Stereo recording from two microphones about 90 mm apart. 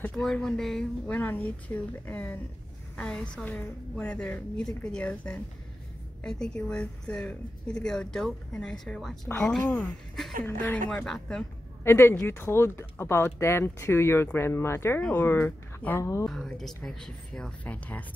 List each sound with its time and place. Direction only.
0.0 s a woman's voice: 10° left (ahead or behind)
1.1 s a woman's voice: 20° left (ahead or behind)
10.4 s speech: 20° left (ahead or behind)
11.1 s a woman's voice: 5° left (ahead or behind)
11.8 s speech: 25° left (ahead or behind)
15.0 s speech: 15° left (ahead or behind)
16.0 s speech: 35° left (ahead or behind)
16.3 s a woman's voice: 5° left (ahead or behind)